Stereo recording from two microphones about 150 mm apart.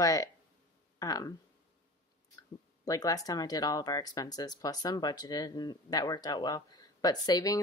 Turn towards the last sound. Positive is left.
turn(degrees=25)  # may be behind; listen again after turning